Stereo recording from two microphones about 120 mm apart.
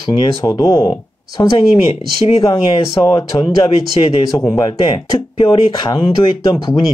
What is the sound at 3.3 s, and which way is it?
Speech, 30° left (ahead or behind).